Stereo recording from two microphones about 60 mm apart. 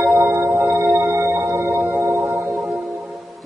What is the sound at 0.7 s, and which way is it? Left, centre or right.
Singing bowl, right.